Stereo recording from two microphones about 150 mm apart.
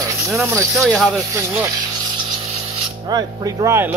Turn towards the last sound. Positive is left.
turn(degrees=-20)  # may be behind; listen again after turning